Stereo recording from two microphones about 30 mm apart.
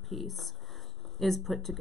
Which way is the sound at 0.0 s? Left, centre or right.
Centre.